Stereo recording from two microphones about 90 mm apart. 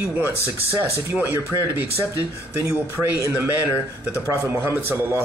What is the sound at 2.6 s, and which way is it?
A man's voice, 35° right (ahead or behind).